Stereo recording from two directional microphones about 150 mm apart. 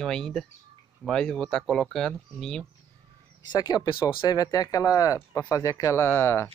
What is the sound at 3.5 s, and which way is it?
Speech, 25° left (ahead or behind).